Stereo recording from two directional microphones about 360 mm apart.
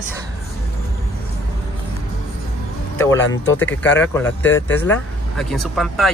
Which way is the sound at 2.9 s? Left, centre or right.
Centre.